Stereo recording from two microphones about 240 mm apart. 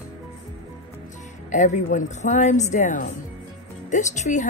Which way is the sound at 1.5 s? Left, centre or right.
Left.